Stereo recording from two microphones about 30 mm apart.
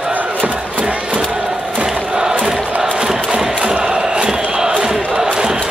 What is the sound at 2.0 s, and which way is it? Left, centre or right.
Crowd, right.